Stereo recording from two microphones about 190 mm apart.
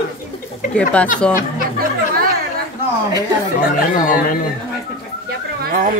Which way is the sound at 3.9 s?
45° left (ahead or behind).